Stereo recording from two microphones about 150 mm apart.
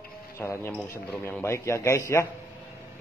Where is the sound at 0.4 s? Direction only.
15° left (ahead or behind).